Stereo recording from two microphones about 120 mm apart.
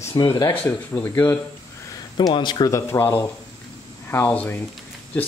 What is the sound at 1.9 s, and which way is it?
Speech, 35° left (ahead or behind).